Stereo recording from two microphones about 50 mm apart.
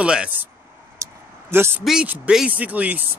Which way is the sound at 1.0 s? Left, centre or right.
Right.